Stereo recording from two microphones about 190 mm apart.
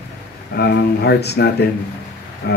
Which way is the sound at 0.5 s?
60° left (ahead or behind).